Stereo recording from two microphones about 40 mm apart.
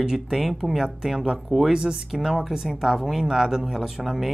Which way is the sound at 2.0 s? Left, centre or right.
Centre.